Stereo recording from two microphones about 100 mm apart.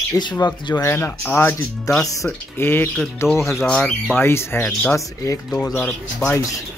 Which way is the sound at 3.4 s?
5° left (ahead or behind).